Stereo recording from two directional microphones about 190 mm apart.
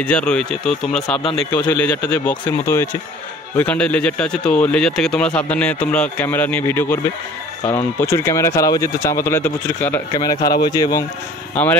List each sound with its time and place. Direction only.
0.0 s a man's voice: 5° left (ahead or behind)
10.3 s speech: 50° left (ahead or behind)
10.6 s speech: 20° left (ahead or behind)
11.6 s a man's voice: 10° left (ahead or behind)